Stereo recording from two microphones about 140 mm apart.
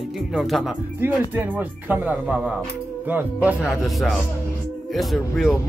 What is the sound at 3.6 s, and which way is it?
Speech, centre (ahead or behind).